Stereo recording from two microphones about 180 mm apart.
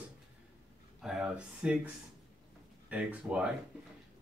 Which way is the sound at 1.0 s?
5° right (ahead or behind).